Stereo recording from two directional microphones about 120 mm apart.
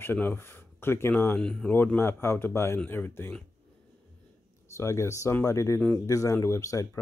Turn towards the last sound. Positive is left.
turn(degrees=25)  # may be behind; listen again after turning